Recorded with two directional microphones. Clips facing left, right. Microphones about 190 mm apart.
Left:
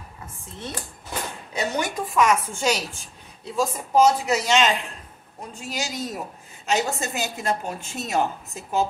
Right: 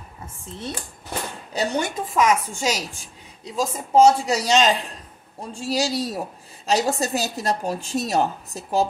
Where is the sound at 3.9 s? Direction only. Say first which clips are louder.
Right 3 dB; 30° right (ahead or behind).